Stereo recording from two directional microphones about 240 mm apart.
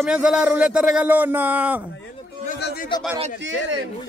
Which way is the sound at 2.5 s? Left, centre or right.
Left.